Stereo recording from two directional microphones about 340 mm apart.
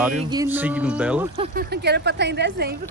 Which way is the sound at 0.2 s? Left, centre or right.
Centre.